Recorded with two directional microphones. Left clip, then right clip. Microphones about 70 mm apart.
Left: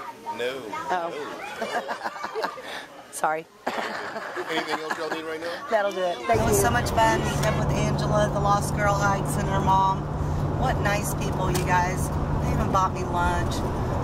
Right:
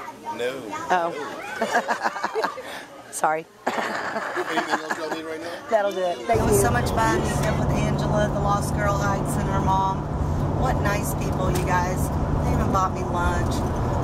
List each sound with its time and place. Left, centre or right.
0.4 s speech: centre
1.6 s a sound: centre
3.2 s speech: centre
5.7 s speech: centre
10.6 s speech: centre